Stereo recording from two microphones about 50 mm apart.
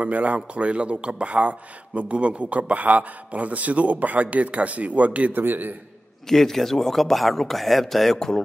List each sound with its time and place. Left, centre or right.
0.0 s a man's voice: right
5.4 s a man's voice: right
6.2 s speech: centre